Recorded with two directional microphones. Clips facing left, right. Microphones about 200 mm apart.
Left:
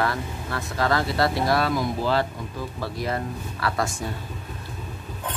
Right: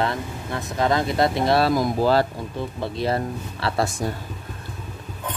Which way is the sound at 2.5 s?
25° right (ahead or behind).